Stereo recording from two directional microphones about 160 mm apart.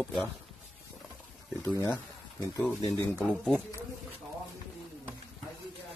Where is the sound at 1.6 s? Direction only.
15° left (ahead or behind).